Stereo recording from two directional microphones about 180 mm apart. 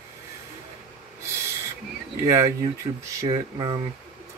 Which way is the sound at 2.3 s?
15° right (ahead or behind).